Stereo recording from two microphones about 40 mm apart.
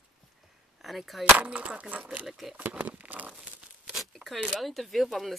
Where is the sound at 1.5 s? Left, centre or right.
Right.